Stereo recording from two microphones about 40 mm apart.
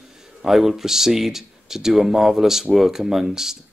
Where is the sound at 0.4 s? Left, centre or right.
Centre.